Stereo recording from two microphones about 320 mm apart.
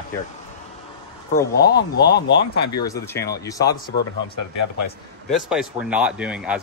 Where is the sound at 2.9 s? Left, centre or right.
Centre.